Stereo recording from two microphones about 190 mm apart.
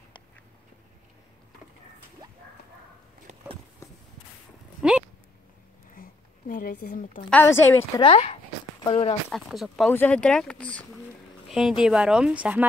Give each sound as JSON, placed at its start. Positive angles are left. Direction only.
{"t": 4.8, "sound": "a sound", "side_deg": -5}
{"t": 5.9, "sound": "a sound", "side_deg": 45}
{"t": 7.2, "sound": "a woman's voice", "side_deg": 10}
{"t": 8.0, "sound": "speech", "side_deg": 30}
{"t": 9.3, "sound": "speech", "side_deg": 0}
{"t": 11.5, "sound": "speech", "side_deg": -5}